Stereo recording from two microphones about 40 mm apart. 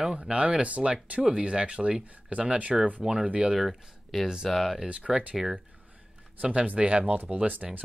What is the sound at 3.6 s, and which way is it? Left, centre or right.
Speech, centre.